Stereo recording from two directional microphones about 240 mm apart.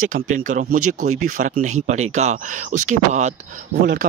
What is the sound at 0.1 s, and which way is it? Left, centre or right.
Speech, right.